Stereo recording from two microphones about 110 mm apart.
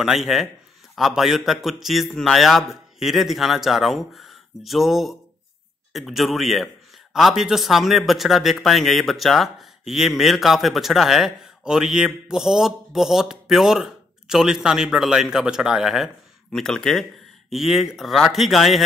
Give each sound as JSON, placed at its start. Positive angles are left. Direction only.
{"t": 0.0, "sound": "speech", "side_deg": 0}